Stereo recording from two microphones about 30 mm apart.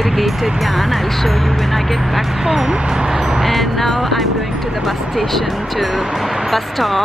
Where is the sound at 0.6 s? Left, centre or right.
Centre.